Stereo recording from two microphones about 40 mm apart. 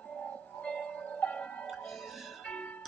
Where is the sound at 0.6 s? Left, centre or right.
Left.